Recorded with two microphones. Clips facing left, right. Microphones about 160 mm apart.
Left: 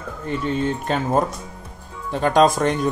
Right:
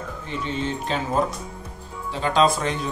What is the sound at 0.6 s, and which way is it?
Speech, 50° left (ahead or behind).